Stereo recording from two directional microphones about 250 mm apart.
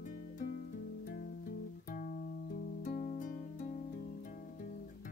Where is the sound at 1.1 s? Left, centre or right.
Left.